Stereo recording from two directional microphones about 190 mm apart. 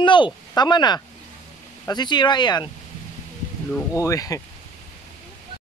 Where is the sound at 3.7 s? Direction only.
15° left (ahead or behind).